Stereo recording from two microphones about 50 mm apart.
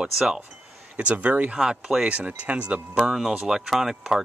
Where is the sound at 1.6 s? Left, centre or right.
Centre.